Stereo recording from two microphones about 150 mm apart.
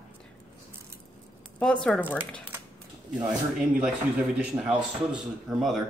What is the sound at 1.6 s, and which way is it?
Speech, 5° left (ahead or behind).